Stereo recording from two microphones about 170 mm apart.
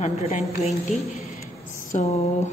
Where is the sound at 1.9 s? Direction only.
40° left (ahead or behind).